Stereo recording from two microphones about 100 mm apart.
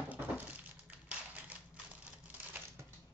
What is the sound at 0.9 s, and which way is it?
Typewriter, 15° right (ahead or behind).